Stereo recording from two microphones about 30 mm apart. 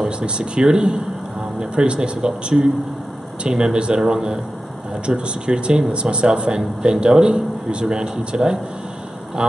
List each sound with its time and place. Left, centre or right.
0.2 s speech: right
3.4 s speech: right
5.0 s speech: right
7.3 s speech: centre
7.9 s speech: right